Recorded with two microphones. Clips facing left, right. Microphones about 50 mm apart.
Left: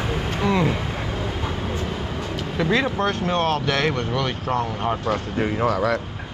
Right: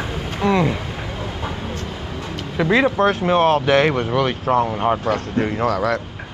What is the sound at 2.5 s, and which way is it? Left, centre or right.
Speech, centre.